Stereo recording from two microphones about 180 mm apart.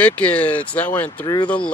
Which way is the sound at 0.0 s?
5° left (ahead or behind).